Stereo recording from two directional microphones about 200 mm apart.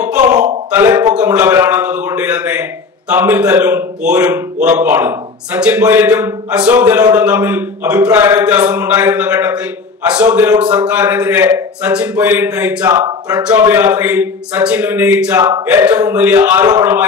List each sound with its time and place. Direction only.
0.7 s a sound: 10° right (ahead or behind)
3.1 s a man's voice: 10° right (ahead or behind)
12.8 s speech: 20° right (ahead or behind)
13.3 s a man's voice: 10° right (ahead or behind)
15.3 s speech: 20° right (ahead or behind)
15.6 s a man's voice: 10° right (ahead or behind)